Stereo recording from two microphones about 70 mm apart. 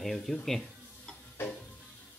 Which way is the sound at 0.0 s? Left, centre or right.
Centre.